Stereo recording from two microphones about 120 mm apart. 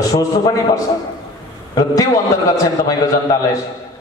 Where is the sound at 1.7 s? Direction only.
30° left (ahead or behind).